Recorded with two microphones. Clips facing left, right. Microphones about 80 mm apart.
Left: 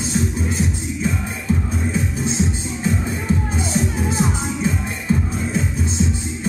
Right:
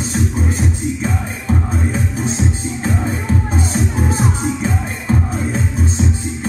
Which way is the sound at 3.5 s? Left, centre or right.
Right.